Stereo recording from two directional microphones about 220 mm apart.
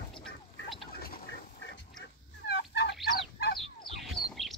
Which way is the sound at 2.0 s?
50° left (ahead or behind).